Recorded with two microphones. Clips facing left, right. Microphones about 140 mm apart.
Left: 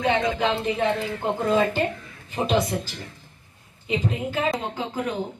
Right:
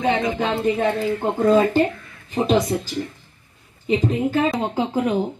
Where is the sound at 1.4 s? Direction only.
50° right (ahead or behind).